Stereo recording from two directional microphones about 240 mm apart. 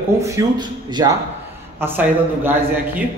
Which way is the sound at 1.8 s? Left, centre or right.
Centre.